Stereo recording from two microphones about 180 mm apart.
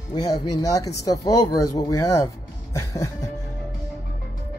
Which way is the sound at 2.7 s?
15° left (ahead or behind).